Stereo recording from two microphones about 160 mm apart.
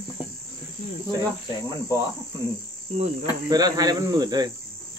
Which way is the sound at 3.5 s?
20° right (ahead or behind).